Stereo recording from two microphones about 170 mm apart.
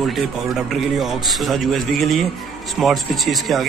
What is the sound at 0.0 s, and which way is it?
Speech, centre (ahead or behind).